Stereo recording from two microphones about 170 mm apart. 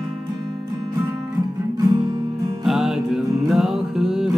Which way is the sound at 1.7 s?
25° right (ahead or behind).